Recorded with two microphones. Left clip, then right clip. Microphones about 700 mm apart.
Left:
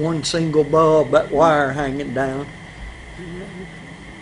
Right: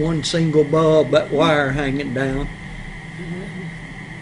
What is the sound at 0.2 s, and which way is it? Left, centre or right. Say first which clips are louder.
A man's voice: right 2 dB; right.